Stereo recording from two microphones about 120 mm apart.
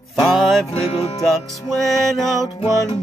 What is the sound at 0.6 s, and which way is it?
Music, 55° left (ahead or behind).